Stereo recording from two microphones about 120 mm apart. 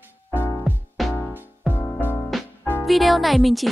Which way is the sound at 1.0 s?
Centre (ahead or behind).